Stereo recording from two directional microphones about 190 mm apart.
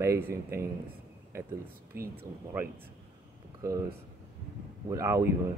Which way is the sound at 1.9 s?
55° right (ahead or behind).